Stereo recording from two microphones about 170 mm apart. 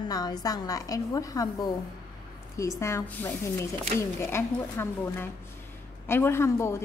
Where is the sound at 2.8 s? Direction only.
15° left (ahead or behind).